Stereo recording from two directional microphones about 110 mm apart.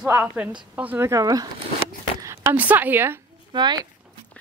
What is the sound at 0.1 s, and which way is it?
A woman's voice, 15° right (ahead or behind).